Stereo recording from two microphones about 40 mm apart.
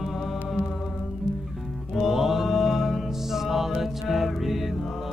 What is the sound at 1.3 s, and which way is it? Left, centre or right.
Music, right.